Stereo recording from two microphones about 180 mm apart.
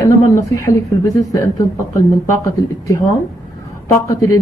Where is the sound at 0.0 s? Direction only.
20° left (ahead or behind).